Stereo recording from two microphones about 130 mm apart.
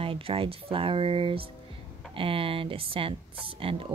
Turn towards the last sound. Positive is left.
turn(degrees=-45)  # may be behind; listen again after turning